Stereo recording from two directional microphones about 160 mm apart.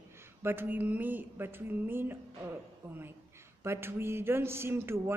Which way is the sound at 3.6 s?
15° right (ahead or behind).